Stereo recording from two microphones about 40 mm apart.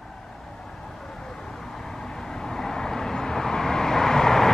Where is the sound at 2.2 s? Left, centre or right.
Centre.